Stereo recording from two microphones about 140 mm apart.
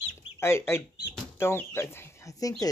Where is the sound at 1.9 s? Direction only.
25° left (ahead or behind).